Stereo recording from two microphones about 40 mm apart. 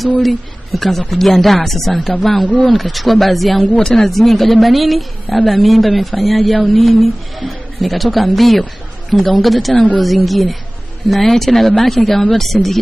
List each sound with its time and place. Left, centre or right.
0.2 s a woman's voice: centre
2.4 s speech: left
2.7 s a woman's voice: centre
3.7 s a woman's voice: centre